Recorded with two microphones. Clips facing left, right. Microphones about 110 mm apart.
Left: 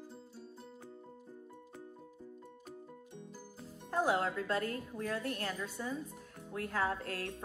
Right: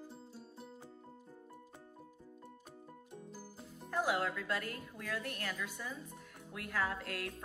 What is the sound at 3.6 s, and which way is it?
A woman's voice, 35° left (ahead or behind).